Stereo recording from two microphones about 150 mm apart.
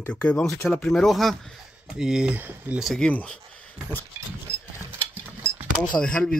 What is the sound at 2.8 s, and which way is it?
Speech, centre (ahead or behind).